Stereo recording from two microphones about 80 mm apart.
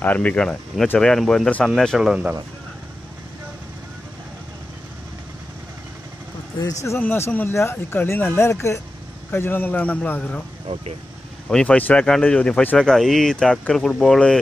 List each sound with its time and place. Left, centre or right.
0.0 s speech: centre
2.0 s speech: centre
6.6 s speech: left
7.0 s speech: left
11.4 s speech: centre